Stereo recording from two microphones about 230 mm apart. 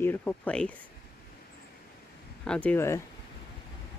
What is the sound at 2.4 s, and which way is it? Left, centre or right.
Speech, centre.